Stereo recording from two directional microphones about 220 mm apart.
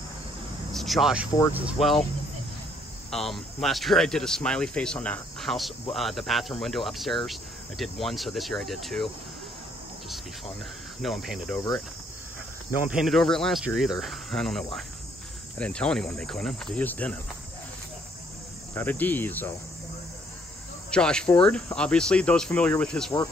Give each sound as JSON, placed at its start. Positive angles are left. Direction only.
{"t": 0.7, "sound": "speech", "side_deg": 0}
{"t": 3.1, "sound": "speech", "side_deg": 0}
{"t": 11.0, "sound": "speech", "side_deg": 0}
{"t": 12.9, "sound": "speech", "side_deg": 0}
{"t": 18.8, "sound": "cricket", "side_deg": 10}
{"t": 20.9, "sound": "speech", "side_deg": 5}